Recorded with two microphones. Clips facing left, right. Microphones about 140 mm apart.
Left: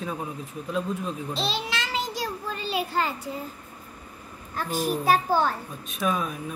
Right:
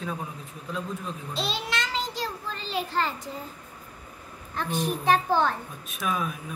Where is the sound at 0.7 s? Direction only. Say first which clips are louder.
Left 4 dB; 5° left (ahead or behind).